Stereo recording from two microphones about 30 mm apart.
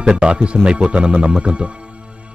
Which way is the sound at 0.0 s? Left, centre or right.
Right.